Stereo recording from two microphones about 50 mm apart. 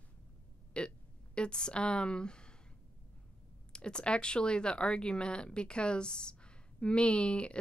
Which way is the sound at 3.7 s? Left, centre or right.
Centre.